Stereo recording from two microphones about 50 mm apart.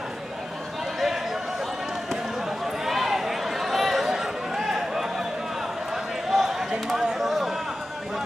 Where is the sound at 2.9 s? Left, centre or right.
Centre.